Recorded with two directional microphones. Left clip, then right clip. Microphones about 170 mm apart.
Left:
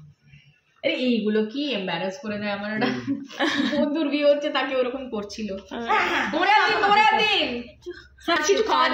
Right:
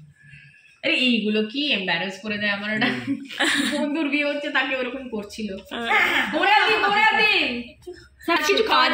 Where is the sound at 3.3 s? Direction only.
20° left (ahead or behind).